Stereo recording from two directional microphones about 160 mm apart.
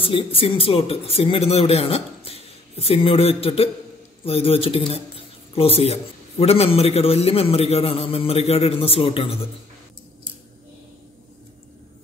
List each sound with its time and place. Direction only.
0.0 s a man's voice: 35° left (ahead or behind)